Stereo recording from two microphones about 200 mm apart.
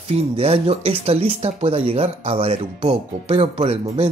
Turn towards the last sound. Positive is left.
turn(degrees=-30)  # may be behind; listen again after turning